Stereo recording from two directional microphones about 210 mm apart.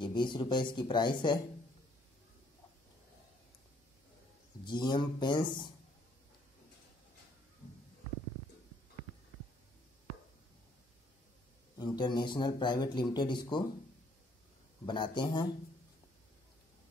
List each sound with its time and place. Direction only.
0.0 s a man's voice: 20° left (ahead or behind)
4.6 s a man's voice: 20° left (ahead or behind)
11.8 s a man's voice: 20° left (ahead or behind)
14.9 s a man's voice: 20° left (ahead or behind)